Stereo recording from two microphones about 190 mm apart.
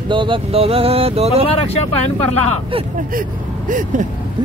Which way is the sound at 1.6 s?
35° left (ahead or behind).